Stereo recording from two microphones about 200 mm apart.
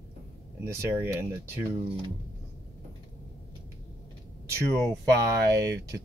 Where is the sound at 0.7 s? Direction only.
15° right (ahead or behind).